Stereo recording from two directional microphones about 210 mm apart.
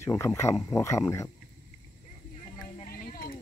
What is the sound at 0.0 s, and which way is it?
Speech, 15° left (ahead or behind).